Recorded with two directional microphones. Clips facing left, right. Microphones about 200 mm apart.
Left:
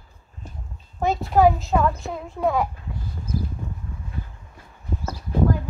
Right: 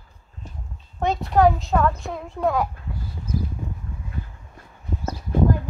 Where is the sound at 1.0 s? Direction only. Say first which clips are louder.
Even; centre (ahead or behind).